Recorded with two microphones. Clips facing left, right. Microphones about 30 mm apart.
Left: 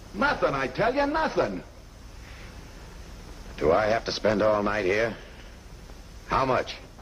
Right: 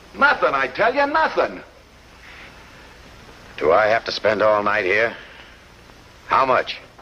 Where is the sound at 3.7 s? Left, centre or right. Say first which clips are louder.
Right 8 dB; right.